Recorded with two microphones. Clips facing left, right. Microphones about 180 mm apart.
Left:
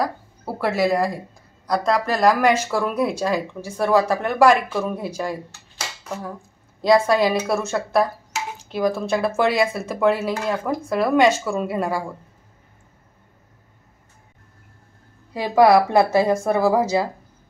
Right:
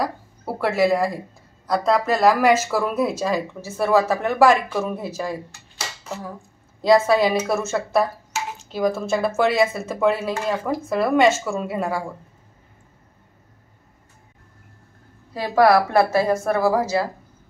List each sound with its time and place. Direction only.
0.6 s speech: centre (ahead or behind)
6.8 s speech: 5° right (ahead or behind)
15.3 s speech: 15° left (ahead or behind)